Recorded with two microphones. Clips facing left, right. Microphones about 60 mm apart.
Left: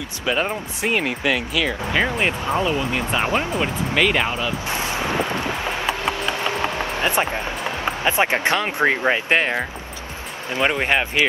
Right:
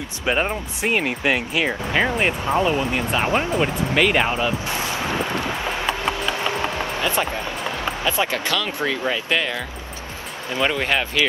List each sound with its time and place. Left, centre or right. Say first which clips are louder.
0.2 s speech: right 1 dB; right
0.5 s speech: even; centre
1.2 s speech: even; right
2.0 s speech: right 1 dB; centre
2.5 s speech: right 3 dB; right
3.5 s speech: right 1 dB; centre
4.6 s wind: left 1 dB; left
5.7 s wood: even; centre
6.5 s a sound: left 1 dB; left
7.8 s speech: left 3 dB; left
10.5 s speech: left 1 dB; left